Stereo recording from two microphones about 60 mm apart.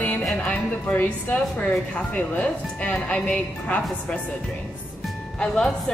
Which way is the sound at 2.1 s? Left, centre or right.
Left.